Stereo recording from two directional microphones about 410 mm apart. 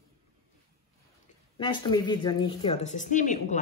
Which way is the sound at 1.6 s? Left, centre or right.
Centre.